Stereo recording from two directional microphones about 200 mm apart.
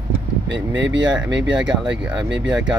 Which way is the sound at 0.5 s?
65° right (ahead or behind).